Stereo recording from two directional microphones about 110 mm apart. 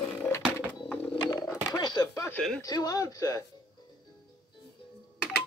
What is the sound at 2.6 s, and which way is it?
Speech, 35° left (ahead or behind).